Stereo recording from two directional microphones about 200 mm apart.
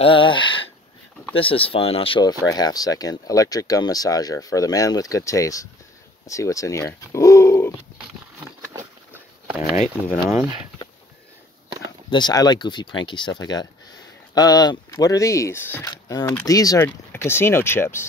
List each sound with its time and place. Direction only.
0.0 s speech: 25° left (ahead or behind)
8.4 s a sound: 10° right (ahead or behind)
12.1 s speech: 20° left (ahead or behind)